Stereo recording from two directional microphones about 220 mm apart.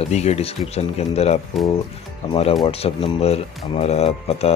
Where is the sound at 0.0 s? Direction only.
30° left (ahead or behind).